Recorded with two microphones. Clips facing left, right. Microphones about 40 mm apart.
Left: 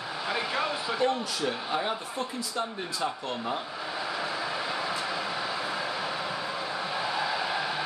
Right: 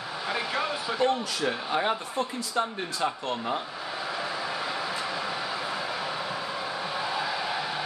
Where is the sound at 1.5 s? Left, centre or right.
Right.